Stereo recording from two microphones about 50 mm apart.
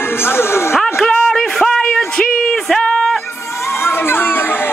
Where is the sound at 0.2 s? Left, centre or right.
Left.